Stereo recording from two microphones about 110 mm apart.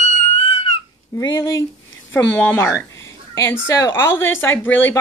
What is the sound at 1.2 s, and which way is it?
Speech, 35° left (ahead or behind).